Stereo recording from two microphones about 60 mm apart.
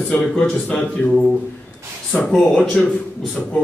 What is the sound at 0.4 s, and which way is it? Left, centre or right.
Speech, centre.